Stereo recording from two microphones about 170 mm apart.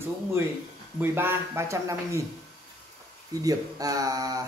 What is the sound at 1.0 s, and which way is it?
A child's voice, 15° right (ahead or behind).